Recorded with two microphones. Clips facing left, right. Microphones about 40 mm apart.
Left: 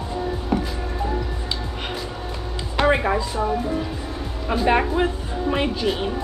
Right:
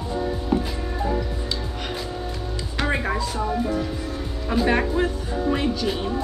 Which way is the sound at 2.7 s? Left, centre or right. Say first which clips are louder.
Left 6 dB; left.